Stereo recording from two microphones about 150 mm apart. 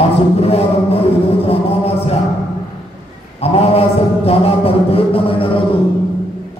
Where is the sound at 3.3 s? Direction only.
40° left (ahead or behind).